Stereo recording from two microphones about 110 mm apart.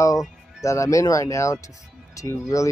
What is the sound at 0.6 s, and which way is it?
Speech, 30° left (ahead or behind).